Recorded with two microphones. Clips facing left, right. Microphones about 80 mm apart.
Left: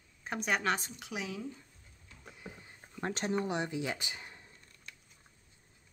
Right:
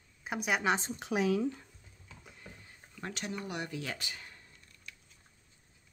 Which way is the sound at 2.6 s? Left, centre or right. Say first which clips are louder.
Left 6 dB; left.